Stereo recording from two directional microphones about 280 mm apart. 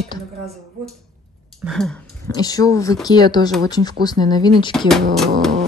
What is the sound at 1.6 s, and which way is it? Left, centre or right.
Speech, centre.